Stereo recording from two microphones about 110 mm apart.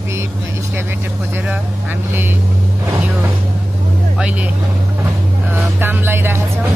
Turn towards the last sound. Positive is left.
turn(degrees=-20)  # may be behind; listen again after turning